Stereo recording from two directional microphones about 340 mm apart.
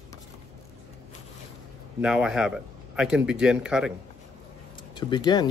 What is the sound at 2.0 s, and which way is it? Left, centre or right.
Speech, centre.